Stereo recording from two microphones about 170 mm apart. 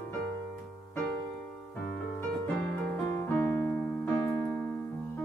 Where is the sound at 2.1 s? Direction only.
10° left (ahead or behind).